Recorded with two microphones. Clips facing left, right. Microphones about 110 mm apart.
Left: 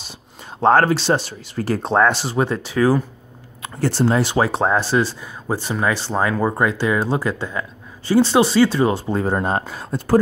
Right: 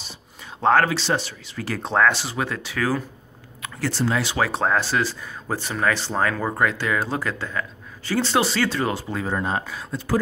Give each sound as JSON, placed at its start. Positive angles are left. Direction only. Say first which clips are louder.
{"t": 0.4, "sound": "speech", "louder": "left 4 dB", "side_deg": 35}
{"t": 4.0, "sound": "speech", "louder": "left 5 dB", "side_deg": 35}
{"t": 9.1, "sound": "speech", "louder": "left 5 dB", "side_deg": 40}